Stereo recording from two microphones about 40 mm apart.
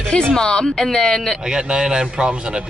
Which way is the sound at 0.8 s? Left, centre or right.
Centre.